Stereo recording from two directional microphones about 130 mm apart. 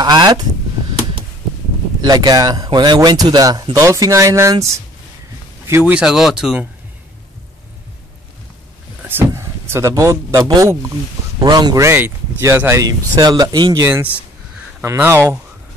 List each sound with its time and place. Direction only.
0.0 s speech: 35° right (ahead or behind)
2.0 s speech: 30° right (ahead or behind); by 6.0 s 15° right (ahead or behind)
6.0 s speech: 5° right (ahead or behind)
9.0 s speech: 20° right (ahead or behind); by 11.8 s 35° right (ahead or behind)
11.8 s speech: 15° right (ahead or behind); by 13.8 s 35° right (ahead or behind)
13.8 s speech: 15° right (ahead or behind)